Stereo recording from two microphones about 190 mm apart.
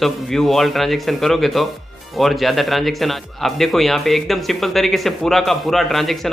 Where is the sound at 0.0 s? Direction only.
Centre (ahead or behind).